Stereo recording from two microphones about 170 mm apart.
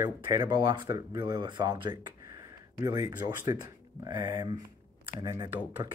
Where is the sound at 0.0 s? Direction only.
15° right (ahead or behind).